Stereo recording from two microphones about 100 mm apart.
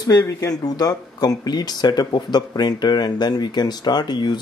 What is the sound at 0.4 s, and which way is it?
Speech, 40° left (ahead or behind).